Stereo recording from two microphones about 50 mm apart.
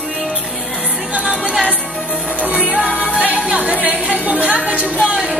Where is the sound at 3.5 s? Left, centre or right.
Right.